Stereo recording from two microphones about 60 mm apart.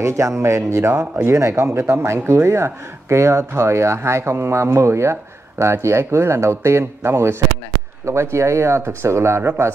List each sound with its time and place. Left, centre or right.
0.0 s speech: right